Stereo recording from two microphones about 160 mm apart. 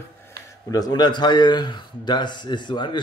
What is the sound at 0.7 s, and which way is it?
Speech, 25° left (ahead or behind).